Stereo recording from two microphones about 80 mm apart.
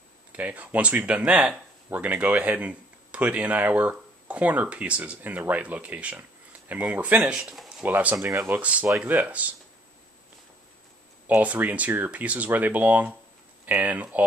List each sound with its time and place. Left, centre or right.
0.3 s speech: centre
7.2 s speech: centre
7.8 s speech: centre
8.3 s speech: right
8.5 s speech: centre
11.2 s speech: centre